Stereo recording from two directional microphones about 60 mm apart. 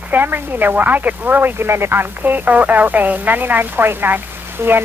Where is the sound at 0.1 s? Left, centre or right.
Right.